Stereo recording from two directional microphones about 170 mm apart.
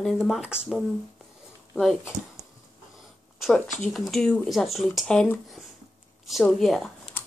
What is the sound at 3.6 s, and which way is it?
Speech, 45° left (ahead or behind).